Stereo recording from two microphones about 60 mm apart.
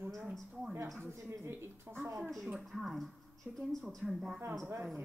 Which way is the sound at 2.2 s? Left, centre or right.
Centre.